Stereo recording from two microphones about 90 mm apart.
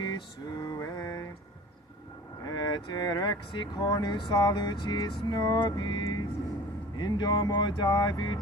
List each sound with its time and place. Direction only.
0.0 s a sound: 50° left (ahead or behind)
0.7 s mantra: 40° left (ahead or behind)
2.4 s speech: 50° left (ahead or behind)
5.3 s speech: 50° left (ahead or behind)